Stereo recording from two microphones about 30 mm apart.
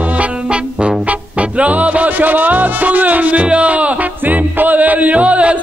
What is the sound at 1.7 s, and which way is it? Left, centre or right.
Music, right.